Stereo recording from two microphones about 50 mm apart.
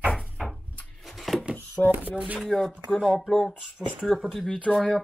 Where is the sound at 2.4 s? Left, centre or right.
Centre.